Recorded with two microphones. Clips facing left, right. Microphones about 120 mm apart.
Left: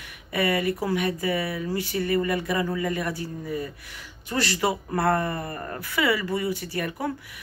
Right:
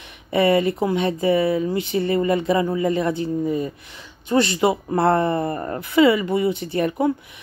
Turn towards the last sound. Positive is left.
turn(degrees=-25)  # may be behind; listen again after turning